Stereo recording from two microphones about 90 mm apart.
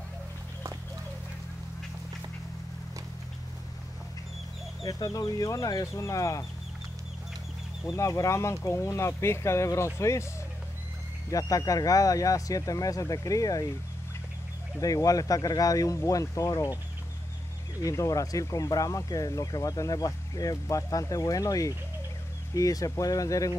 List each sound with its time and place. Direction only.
4.8 s speech: 40° left (ahead or behind)
7.9 s speech: 35° left (ahead or behind)
11.2 s speech: 40° left (ahead or behind)
14.8 s speech: 40° left (ahead or behind)
17.8 s speech: 40° left (ahead or behind)